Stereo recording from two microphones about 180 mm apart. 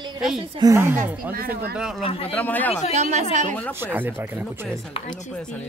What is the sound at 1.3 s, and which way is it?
Speech, 55° right (ahead or behind).